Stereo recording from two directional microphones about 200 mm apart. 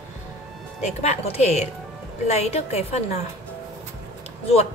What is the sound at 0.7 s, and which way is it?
Speech, 35° left (ahead or behind).